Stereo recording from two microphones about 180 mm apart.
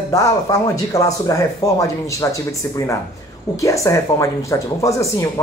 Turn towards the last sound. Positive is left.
turn(degrees=20)  # may be behind; listen again after turning